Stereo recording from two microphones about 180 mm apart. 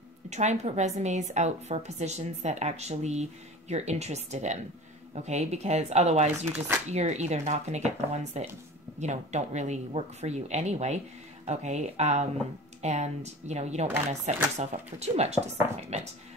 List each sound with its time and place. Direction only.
0.3 s a woman's voice: 40° right (ahead or behind)